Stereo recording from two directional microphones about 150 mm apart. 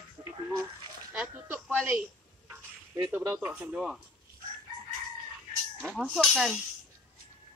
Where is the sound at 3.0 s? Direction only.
15° right (ahead or behind).